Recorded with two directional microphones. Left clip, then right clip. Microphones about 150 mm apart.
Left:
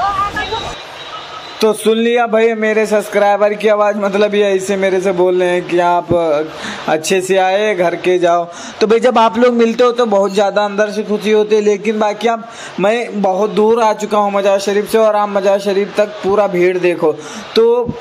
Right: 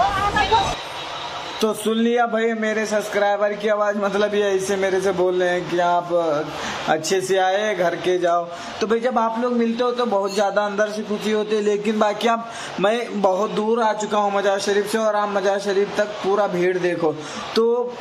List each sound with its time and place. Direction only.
1.6 s a man's voice: 30° left (ahead or behind)
12.8 s a man's voice: 30° left (ahead or behind)
13.6 s a man's voice: 35° left (ahead or behind)